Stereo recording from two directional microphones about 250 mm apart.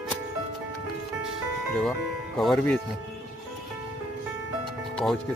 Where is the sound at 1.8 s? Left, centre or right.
Centre.